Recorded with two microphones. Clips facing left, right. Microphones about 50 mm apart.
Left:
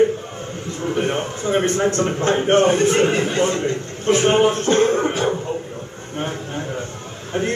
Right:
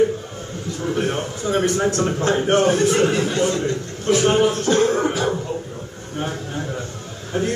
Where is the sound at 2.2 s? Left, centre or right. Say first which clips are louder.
Left 2 dB; left.